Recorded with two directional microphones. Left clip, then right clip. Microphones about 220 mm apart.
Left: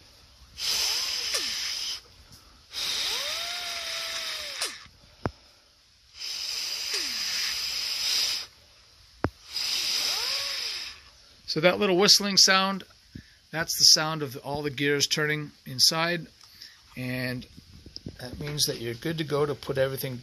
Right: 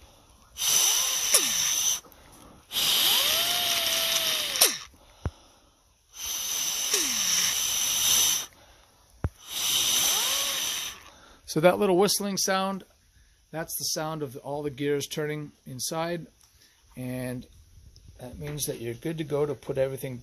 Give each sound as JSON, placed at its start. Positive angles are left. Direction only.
{"t": 0.6, "sound": "a sound", "side_deg": -55}
{"t": 6.1, "sound": "hiss", "side_deg": -55}
{"t": 9.5, "sound": "hiss", "side_deg": -50}
{"t": 11.5, "sound": "speech", "side_deg": -25}